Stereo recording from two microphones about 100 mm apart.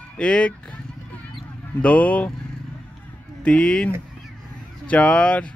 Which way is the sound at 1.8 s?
15° left (ahead or behind).